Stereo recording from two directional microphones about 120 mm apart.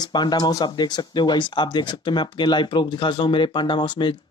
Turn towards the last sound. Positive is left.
turn(degrees=40)  # may be behind; listen again after turning